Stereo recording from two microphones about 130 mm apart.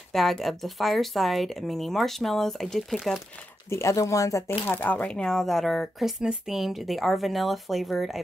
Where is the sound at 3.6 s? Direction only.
20° left (ahead or behind).